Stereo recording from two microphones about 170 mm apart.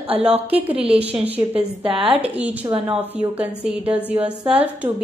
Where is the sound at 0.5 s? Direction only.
10° right (ahead or behind).